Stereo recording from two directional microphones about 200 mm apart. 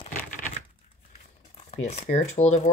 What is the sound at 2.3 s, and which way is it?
Speech, 35° left (ahead or behind).